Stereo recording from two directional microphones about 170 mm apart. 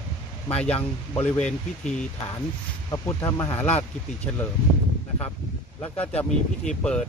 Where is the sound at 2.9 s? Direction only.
20° left (ahead or behind).